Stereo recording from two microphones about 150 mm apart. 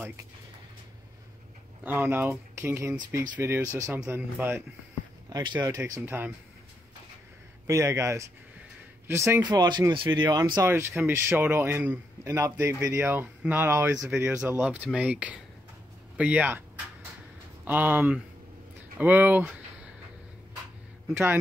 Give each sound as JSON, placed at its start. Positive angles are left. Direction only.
{"t": 1.8, "sound": "a man's voice", "side_deg": -15}
{"t": 7.6, "sound": "speech", "side_deg": -20}
{"t": 9.4, "sound": "speech", "side_deg": -25}
{"t": 10.7, "sound": "a man's voice", "side_deg": -15}